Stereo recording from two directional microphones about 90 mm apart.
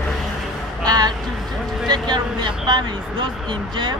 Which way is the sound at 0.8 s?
45° right (ahead or behind).